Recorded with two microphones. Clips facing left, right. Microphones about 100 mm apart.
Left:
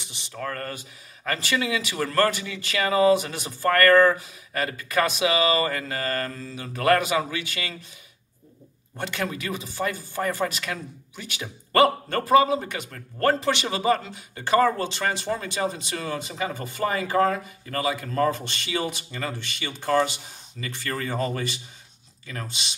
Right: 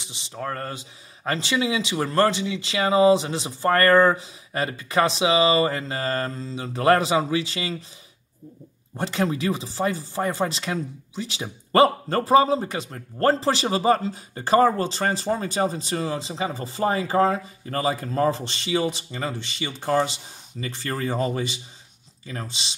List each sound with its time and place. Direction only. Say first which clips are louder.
0.1 s speech: right 2 dB; 25° right (ahead or behind)
8.9 s speech: right 5 dB; 30° right (ahead or behind)